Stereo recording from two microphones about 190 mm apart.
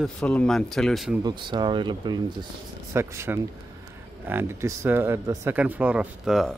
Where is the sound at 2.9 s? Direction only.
15° right (ahead or behind).